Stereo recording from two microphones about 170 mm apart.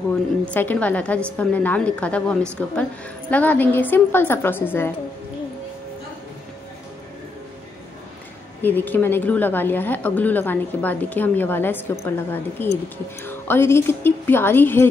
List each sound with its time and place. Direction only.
0.5 s a woman's voice: 10° left (ahead or behind)
8.6 s a woman's voice: 10° left (ahead or behind)